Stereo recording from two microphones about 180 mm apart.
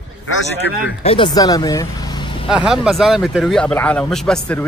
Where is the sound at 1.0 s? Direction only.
30° left (ahead or behind).